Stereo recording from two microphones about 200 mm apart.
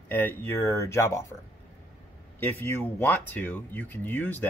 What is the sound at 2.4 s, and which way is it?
Speech, 10° left (ahead or behind).